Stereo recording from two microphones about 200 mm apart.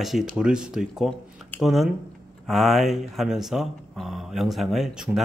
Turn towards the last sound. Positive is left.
turn(degrees=0)  # may be behind; listen again after turning